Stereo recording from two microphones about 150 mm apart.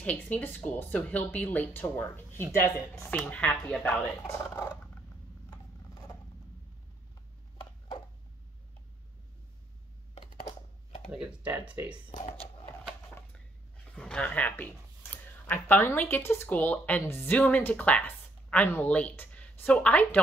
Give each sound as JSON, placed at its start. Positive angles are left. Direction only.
{"t": 0.0, "sound": "speech", "side_deg": 10}
{"t": 4.2, "sound": "speech", "side_deg": 20}
{"t": 5.5, "sound": "a sound", "side_deg": 25}
{"t": 11.1, "sound": "speech", "side_deg": -5}
{"t": 13.9, "sound": "speech", "side_deg": 5}